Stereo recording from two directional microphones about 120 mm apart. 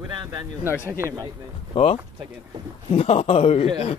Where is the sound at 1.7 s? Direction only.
55° left (ahead or behind).